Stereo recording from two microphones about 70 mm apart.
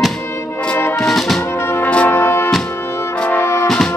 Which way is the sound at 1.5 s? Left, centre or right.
Left.